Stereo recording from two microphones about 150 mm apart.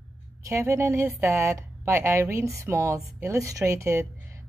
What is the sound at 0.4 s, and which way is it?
Speech, 20° right (ahead or behind).